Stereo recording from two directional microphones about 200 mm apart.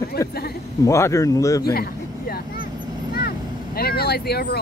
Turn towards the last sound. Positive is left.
turn(degrees=55)  # may be behind; listen again after turning